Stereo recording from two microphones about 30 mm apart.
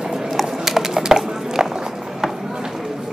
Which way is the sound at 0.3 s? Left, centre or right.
Centre.